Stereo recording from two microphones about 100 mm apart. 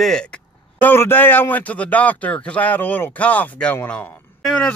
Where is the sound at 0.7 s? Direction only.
20° left (ahead or behind).